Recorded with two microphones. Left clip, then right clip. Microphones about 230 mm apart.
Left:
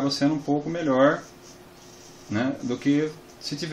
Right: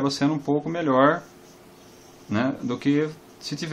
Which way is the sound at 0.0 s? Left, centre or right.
Right.